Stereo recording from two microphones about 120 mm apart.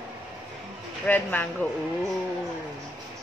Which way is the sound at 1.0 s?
15° left (ahead or behind).